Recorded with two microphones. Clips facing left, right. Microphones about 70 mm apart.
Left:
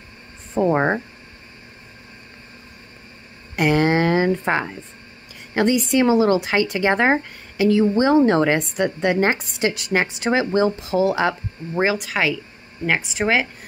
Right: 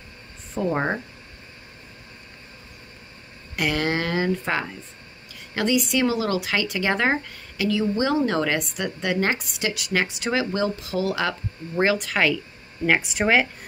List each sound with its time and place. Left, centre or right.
0.7 s speech: left
3.5 s speech: left; by 13.5 s centre